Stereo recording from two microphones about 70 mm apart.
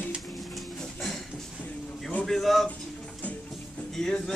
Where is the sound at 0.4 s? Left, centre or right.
Centre.